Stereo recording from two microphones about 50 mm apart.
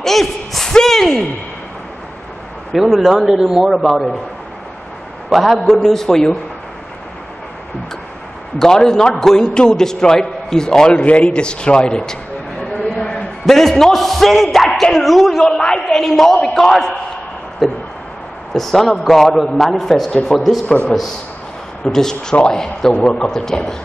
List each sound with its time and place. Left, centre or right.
0.0 s a man's voice: centre
2.8 s a man's voice: centre
5.3 s a man's voice: centre
5.6 s a man's voice: centre
8.5 s a man's voice: centre
12.9 s a sound: centre
13.5 s a man's voice: centre
15.5 s a woman's voice: centre
16.0 s a man's voice: centre
17.6 s a man's voice: centre
20.6 s a man's voice: left
21.8 s a man's voice: centre